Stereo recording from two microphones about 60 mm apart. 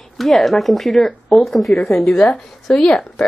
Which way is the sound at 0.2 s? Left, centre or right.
Centre.